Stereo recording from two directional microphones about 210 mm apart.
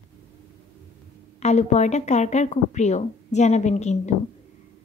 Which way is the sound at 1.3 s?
30° left (ahead or behind).